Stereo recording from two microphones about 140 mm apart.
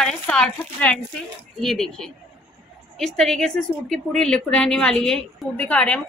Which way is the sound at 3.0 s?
5° left (ahead or behind).